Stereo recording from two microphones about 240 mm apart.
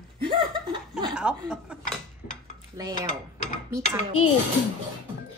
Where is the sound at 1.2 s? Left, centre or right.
Centre.